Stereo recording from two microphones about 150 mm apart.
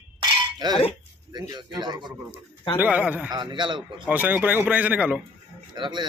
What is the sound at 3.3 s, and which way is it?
Speech, 30° right (ahead or behind).